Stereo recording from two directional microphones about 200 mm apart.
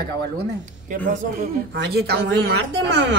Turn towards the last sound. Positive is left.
turn(degrees=-55)  # may be behind; listen again after turning